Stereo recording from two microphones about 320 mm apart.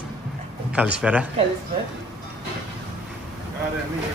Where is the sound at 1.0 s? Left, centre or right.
Centre.